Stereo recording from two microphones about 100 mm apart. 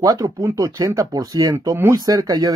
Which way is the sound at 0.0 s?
35° right (ahead or behind).